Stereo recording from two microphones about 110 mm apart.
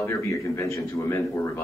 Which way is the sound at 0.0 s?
25° left (ahead or behind).